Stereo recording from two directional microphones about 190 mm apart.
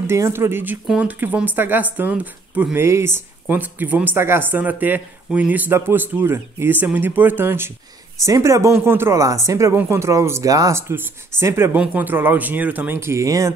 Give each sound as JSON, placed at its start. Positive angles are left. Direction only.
{"t": 0.0, "sound": "speech", "side_deg": -15}